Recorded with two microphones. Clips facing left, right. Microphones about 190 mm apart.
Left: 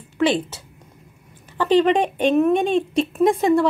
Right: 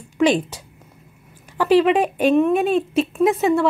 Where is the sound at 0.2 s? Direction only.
15° right (ahead or behind).